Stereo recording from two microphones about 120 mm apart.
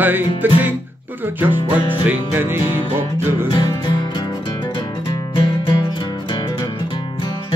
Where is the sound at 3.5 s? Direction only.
40° left (ahead or behind).